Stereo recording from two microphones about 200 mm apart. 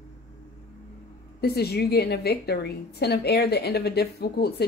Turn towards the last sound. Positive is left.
turn(degrees=50)  # may be behind; listen again after turning